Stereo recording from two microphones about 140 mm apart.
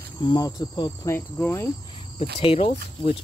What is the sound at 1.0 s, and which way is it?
Cricket, 15° left (ahead or behind).